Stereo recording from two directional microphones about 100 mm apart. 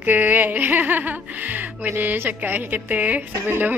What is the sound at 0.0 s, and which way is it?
Speech, 15° right (ahead or behind).